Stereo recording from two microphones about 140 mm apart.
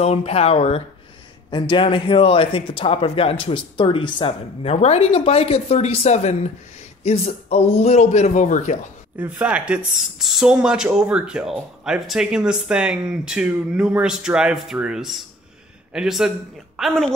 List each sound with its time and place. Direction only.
0.0 s speech: 45° left (ahead or behind)
1.5 s speech: 35° left (ahead or behind)
4.7 s speech: 50° left (ahead or behind)
9.2 s speech: 10° right (ahead or behind)